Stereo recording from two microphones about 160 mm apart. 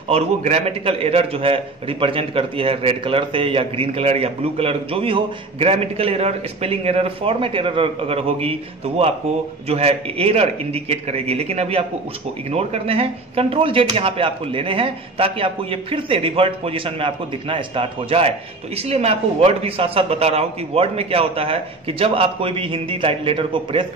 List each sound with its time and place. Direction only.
0.1 s a man's voice: 40° right (ahead or behind)